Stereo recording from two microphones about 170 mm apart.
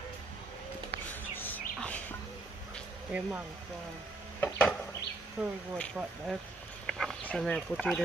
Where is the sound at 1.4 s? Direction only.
10° left (ahead or behind).